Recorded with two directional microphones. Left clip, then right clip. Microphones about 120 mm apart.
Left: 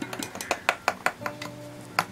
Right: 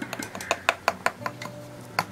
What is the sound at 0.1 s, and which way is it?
Music, centre (ahead or behind).